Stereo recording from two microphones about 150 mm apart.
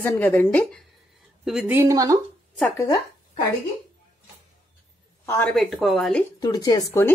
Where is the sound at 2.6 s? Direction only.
20° left (ahead or behind).